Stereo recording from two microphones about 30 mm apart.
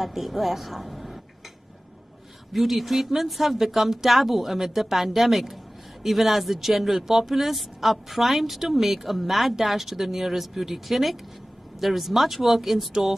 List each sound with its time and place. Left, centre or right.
0.0 s a woman's voice: centre
2.5 s speech: centre